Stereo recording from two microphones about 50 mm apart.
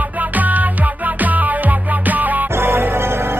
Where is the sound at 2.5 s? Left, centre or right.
Right.